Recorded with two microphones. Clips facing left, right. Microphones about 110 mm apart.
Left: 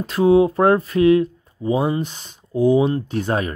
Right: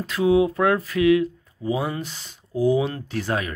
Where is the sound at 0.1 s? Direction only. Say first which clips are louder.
Left 4 dB; 30° left (ahead or behind).